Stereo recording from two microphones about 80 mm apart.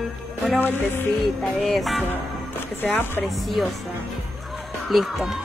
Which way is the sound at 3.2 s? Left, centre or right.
Centre.